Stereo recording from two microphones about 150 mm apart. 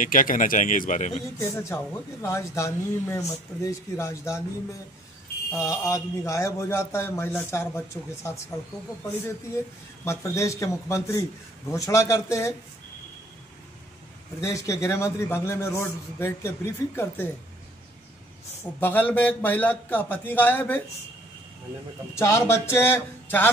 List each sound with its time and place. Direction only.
0.0 s speech: 65° left (ahead or behind)
1.4 s a man's voice: 20° left (ahead or behind)
10.0 s a man's voice: 20° left (ahead or behind)
14.4 s a man's voice: 20° left (ahead or behind)
18.6 s speech: 15° left (ahead or behind)
22.2 s speech: 15° left (ahead or behind)